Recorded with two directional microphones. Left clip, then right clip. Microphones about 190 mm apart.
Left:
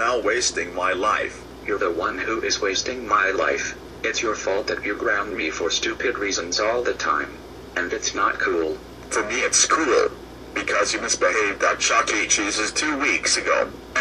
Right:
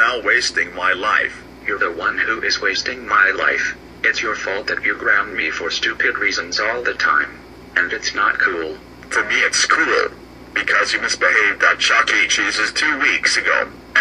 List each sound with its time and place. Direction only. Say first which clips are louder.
0.0 s a man's voice: right 5 dB; centre (ahead or behind)